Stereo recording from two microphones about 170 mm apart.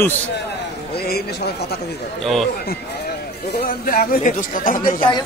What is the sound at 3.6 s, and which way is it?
Speech, 60° left (ahead or behind).